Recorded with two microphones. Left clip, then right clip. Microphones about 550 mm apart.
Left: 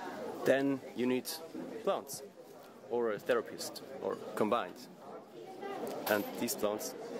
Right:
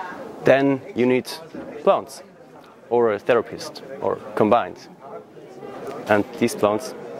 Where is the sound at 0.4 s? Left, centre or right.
Right.